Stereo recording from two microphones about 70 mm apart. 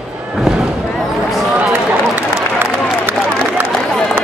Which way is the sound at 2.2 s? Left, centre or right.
Right.